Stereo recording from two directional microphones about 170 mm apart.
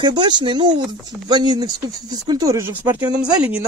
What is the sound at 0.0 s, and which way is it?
Speech, 25° right (ahead or behind).